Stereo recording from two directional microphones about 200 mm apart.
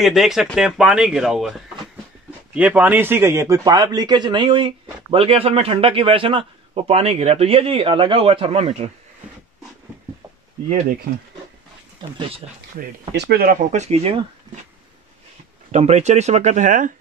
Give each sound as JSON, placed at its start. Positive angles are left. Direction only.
{"t": 0.0, "sound": "a man's voice", "side_deg": 0}
{"t": 13.1, "sound": "speech", "side_deg": -55}
{"t": 15.7, "sound": "speech", "side_deg": -35}